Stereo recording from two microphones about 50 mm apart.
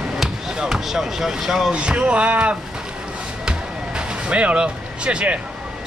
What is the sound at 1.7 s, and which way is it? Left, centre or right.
Speech, right.